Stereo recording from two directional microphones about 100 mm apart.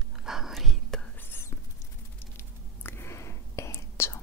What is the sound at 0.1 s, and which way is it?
Whispering, 5° right (ahead or behind).